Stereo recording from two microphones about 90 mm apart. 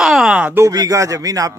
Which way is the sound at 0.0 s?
5° right (ahead or behind).